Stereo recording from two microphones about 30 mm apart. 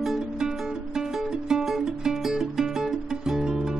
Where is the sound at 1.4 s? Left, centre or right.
Right.